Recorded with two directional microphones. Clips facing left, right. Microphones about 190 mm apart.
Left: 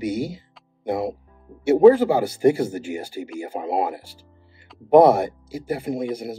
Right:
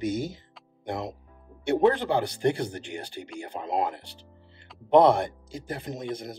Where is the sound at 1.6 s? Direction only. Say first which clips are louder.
Left 9 dB; 5° left (ahead or behind).